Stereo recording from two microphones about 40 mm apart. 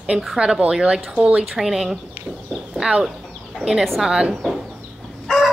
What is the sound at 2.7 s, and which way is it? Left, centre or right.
Speech, right.